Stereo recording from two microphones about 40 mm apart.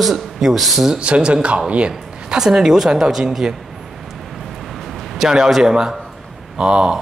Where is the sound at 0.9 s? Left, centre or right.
Right.